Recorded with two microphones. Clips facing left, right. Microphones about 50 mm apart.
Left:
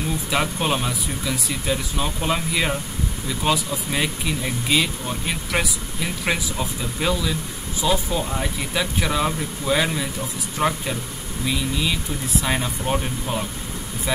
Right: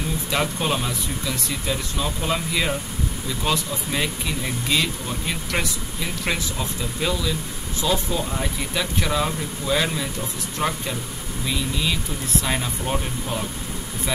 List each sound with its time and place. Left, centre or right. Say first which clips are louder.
0.3 s speech: left 1 dB; centre